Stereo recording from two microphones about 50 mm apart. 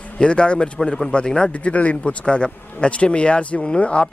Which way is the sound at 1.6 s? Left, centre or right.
Left.